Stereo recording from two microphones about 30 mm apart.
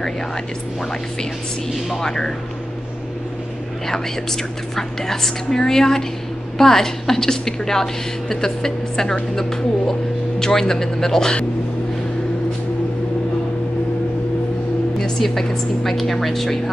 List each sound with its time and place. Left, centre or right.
1.9 s speech: centre
3.8 s a woman's voice: centre
15.1 s a woman's voice: centre